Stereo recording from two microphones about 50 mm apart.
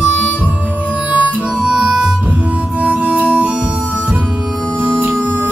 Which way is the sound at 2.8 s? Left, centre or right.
Right.